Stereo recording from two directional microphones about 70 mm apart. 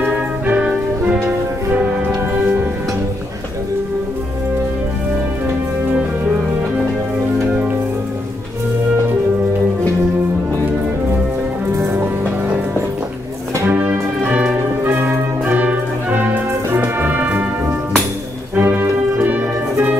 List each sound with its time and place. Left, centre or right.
0.0 s music: centre
13.7 s music: right
18.6 s music: right